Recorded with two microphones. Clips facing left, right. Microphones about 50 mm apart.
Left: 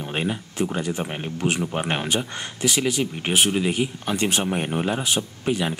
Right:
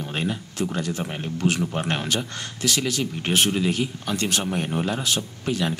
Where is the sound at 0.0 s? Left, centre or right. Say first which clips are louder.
Left 1 dB; centre.